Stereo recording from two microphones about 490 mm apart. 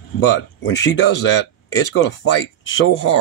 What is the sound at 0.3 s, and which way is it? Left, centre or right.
Speech, left.